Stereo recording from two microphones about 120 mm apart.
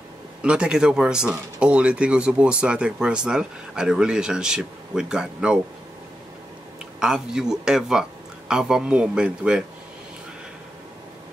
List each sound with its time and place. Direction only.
0.4 s speech: 10° right (ahead or behind)
7.0 s speech: 5° right (ahead or behind)